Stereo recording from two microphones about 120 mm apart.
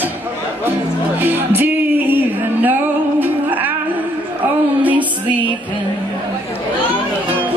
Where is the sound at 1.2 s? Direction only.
15° right (ahead or behind).